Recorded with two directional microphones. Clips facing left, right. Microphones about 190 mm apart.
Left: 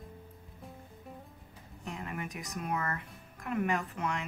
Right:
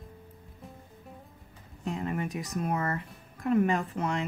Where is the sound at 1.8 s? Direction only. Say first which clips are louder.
Right 8 dB; 30° right (ahead or behind).